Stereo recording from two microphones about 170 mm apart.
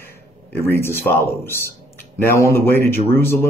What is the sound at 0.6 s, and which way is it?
A man's voice, 15° left (ahead or behind).